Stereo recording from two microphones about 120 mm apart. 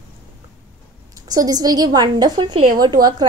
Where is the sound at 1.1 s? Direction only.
30° right (ahead or behind).